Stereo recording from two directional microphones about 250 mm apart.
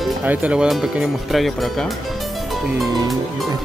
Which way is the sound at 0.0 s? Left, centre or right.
Centre.